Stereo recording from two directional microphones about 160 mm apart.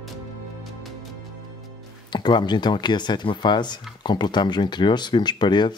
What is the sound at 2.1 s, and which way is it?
Speech, 30° left (ahead or behind).